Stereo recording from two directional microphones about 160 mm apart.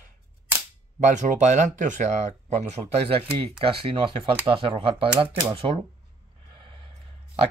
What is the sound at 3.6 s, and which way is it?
Speech, 35° right (ahead or behind).